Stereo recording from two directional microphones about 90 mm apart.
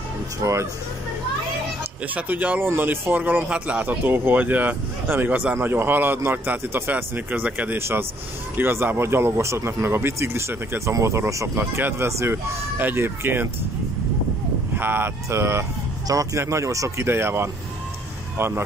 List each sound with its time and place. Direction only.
0.4 s speech: 35° right (ahead or behind)
2.1 s speech: 20° right (ahead or behind)
14.8 s speech: 25° right (ahead or behind)